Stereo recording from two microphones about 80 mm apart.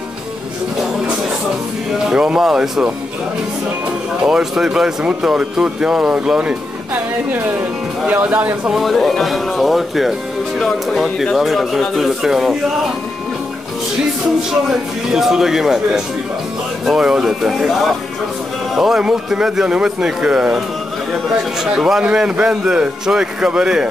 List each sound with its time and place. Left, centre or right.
2.0 s speech: centre
4.2 s speech: centre
7.3 s speech: right
8.6 s speech: centre
15.0 s speech: centre
21.7 s speech: centre